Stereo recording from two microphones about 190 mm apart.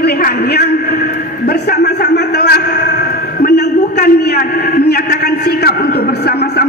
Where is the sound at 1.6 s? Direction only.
60° left (ahead or behind).